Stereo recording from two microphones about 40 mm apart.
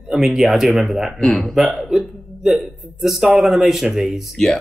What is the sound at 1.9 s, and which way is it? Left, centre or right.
Hiccup, centre.